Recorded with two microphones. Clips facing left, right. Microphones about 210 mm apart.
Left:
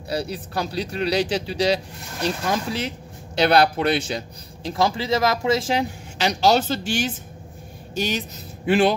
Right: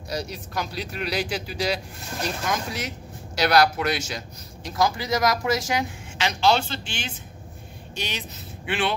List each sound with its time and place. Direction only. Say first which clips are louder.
0.1 s speech: left 4 dB; 30° left (ahead or behind)